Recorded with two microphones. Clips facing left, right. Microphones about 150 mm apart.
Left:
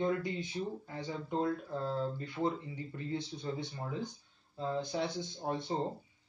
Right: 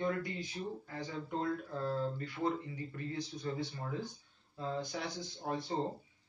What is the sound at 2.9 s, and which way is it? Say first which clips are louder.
Speech: left 3 dB; 25° left (ahead or behind).